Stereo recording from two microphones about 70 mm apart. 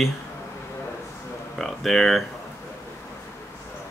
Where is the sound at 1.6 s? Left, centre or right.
Centre.